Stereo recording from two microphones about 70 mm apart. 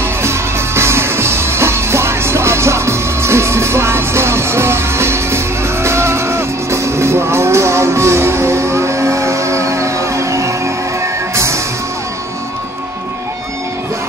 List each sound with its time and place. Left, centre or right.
0.2 s music: right